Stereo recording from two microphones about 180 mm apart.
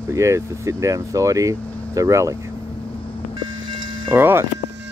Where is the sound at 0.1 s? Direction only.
15° right (ahead or behind).